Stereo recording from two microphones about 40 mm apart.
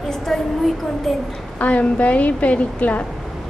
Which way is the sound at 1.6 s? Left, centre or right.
Left.